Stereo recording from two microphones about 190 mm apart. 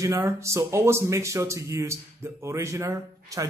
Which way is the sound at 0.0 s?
15° right (ahead or behind).